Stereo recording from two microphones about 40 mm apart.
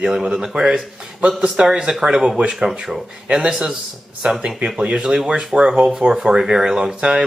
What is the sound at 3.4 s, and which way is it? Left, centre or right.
Speech, centre.